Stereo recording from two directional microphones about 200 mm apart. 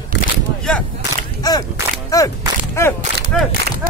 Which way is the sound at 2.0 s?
15° left (ahead or behind).